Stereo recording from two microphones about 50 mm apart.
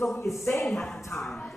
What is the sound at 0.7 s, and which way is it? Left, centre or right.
Music, centre.